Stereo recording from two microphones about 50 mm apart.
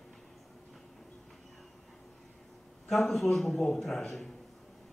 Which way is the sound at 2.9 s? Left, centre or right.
Centre.